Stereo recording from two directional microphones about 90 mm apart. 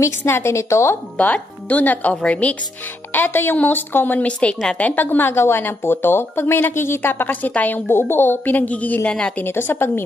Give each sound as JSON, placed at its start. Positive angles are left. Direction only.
{"t": 0.2, "sound": "a woman's voice", "side_deg": 30}
{"t": 1.1, "sound": "speech", "side_deg": 15}
{"t": 9.4, "sound": "speech", "side_deg": 25}